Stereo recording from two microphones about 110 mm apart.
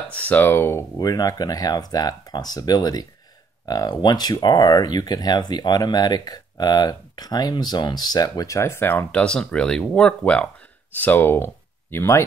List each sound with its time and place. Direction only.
0.1 s speech: 15° left (ahead or behind)
0.9 s speech: 35° left (ahead or behind)